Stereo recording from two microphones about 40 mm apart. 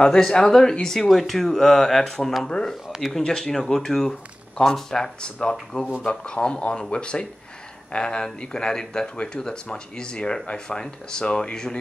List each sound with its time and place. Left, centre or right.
0.5 s speech: centre
3.0 s speech: centre
3.3 s speech: centre
4.6 s speech: left